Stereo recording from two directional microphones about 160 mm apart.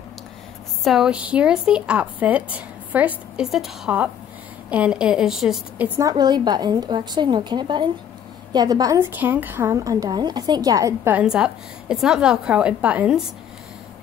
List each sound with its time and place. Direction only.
0.8 s a woman's voice: 5° right (ahead or behind)
5.9 s a woman's voice: 25° right (ahead or behind)
11.1 s a woman's voice: 5° right (ahead or behind)